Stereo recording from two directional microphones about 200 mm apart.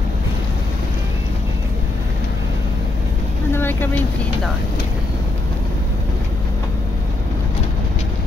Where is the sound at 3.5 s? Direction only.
10° left (ahead or behind).